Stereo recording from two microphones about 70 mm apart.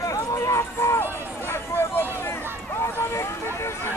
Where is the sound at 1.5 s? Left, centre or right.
Left.